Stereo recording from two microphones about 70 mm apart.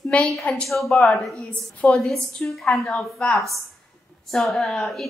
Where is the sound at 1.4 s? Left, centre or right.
Centre.